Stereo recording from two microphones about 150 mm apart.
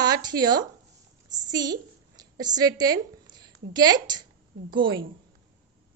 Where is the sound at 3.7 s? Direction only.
25° right (ahead or behind).